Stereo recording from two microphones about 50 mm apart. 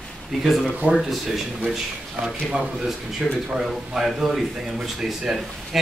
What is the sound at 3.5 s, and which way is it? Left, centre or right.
Speech, centre.